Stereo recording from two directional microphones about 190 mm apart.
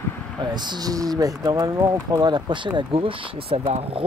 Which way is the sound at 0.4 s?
25° right (ahead or behind).